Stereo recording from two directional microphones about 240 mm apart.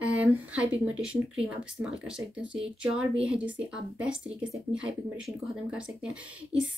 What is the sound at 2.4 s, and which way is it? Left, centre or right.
Speech, right.